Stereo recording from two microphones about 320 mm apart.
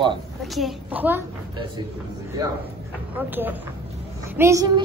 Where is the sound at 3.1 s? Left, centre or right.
Centre.